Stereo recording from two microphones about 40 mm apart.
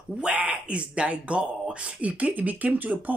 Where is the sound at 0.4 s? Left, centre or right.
Right.